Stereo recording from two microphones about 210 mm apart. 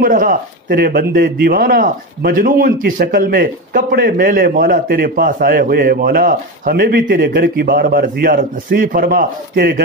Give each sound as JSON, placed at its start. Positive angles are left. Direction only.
{"t": 0.0, "sound": "a man's voice", "side_deg": -40}